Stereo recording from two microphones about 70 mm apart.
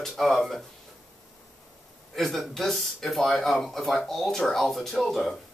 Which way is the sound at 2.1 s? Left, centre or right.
Centre.